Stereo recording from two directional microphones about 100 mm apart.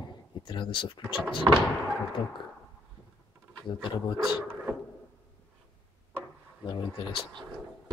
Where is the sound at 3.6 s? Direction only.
50° left (ahead or behind).